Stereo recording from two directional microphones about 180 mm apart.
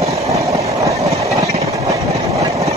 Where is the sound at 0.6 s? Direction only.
20° right (ahead or behind).